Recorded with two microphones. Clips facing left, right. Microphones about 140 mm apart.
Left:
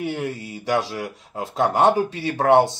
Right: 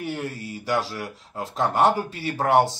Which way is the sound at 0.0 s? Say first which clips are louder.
Left 4 dB; 15° left (ahead or behind).